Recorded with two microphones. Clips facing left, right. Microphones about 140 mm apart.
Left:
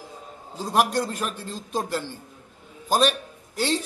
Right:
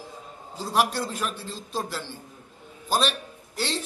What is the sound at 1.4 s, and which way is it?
Speech, 45° left (ahead or behind).